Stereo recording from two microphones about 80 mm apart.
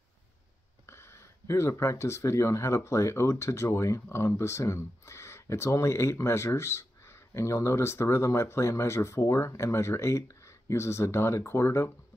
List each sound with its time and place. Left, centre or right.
0.8 s speech: left